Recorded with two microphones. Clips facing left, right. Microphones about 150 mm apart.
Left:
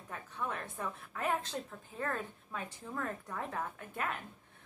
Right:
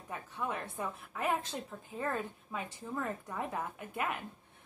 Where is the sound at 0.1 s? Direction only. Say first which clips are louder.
Right 2 dB; 15° right (ahead or behind).